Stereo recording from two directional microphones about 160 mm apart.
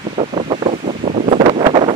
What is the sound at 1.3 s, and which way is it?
Wind noise, 35° right (ahead or behind).